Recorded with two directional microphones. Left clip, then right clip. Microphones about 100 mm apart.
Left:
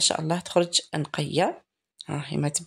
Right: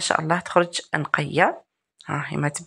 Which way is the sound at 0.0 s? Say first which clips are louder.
Right 4 dB; 30° left (ahead or behind).